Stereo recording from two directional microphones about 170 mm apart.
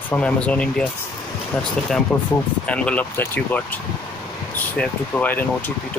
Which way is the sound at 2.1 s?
20° left (ahead or behind).